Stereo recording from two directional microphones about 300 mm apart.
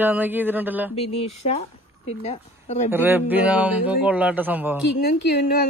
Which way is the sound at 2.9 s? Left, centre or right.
Centre.